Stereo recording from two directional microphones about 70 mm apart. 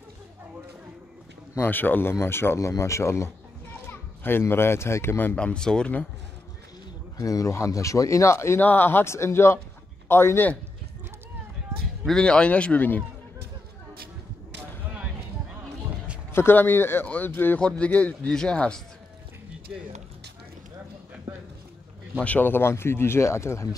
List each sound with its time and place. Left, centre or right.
1.6 s speech: left
3.9 s a child's voice: left
5.3 s speech: centre
7.2 s speech: left
8.5 s a man's voice: left
12.1 s speech: centre
16.3 s speech: left
17.6 s speech: centre
22.2 s speech: left